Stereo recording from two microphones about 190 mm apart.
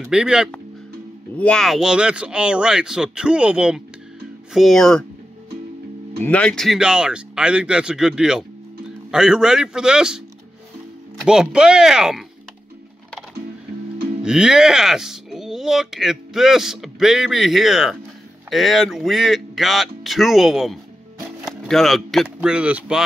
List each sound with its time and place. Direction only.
0.0 s speech: 5° right (ahead or behind)
6.2 s speech: 5° left (ahead or behind)
11.2 s speech: 5° right (ahead or behind)
14.2 s speech: 5° right (ahead or behind)